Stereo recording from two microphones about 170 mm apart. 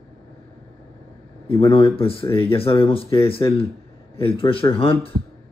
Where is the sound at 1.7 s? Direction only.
35° left (ahead or behind).